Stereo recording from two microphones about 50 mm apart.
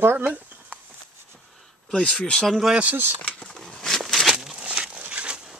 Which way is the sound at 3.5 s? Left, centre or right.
Centre.